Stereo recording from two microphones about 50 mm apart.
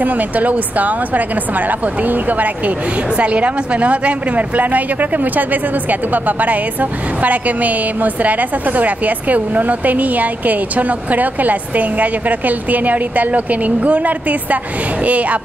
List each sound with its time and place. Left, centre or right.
0.0 s a woman's voice: right